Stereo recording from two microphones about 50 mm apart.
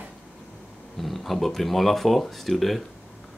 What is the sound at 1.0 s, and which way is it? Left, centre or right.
Speech, centre.